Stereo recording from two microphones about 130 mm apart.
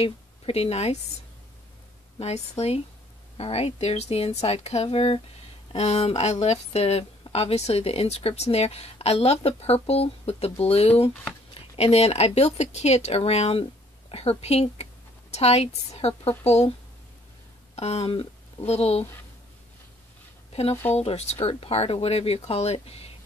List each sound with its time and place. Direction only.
0.0 s a woman's voice: 50° left (ahead or behind)
2.1 s speech: 55° left (ahead or behind)
17.7 s speech: 55° left (ahead or behind)
20.9 s speech: 50° left (ahead or behind)